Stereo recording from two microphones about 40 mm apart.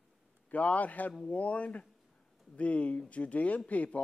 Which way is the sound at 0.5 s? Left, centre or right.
Left.